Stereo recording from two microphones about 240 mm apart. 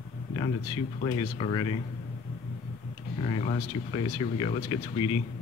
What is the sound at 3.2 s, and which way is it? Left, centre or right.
Speech, left.